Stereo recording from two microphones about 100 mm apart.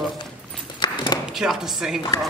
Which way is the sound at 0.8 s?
50° left (ahead or behind).